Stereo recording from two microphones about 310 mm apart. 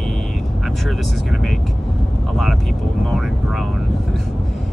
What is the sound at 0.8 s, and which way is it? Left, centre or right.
Speech, centre.